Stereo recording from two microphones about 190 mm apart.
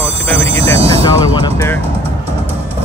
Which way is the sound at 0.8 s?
25° left (ahead or behind).